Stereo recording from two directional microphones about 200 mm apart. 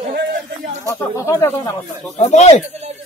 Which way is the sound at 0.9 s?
15° left (ahead or behind).